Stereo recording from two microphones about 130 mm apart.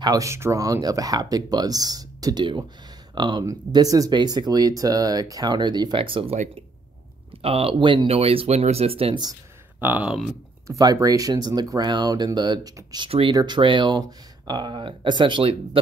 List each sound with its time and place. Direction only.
0.0 s speech: 25° right (ahead or behind); by 6.3 s 45° right (ahead or behind)
7.4 s speech: 50° right (ahead or behind)
8.1 s speech: 50° right (ahead or behind)
9.8 s speech: 15° right (ahead or behind)
10.7 s speech: 30° right (ahead or behind)